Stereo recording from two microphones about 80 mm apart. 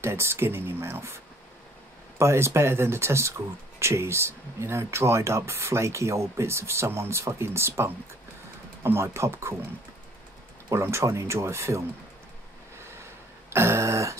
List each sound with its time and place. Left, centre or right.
0.0 s speech: right
10.7 s speech: right
13.5 s a sound: right